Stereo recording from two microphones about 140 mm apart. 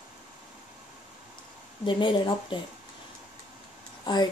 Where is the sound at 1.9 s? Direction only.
35° left (ahead or behind).